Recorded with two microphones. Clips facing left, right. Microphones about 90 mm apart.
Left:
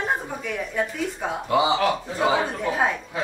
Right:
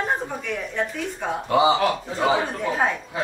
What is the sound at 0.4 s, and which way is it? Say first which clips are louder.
Speech: even; 5° left (ahead or behind).